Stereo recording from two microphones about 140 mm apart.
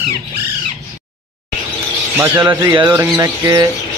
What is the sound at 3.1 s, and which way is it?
Bird, 25° right (ahead or behind).